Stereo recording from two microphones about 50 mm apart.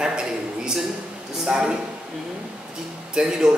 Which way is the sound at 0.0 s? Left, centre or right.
Centre.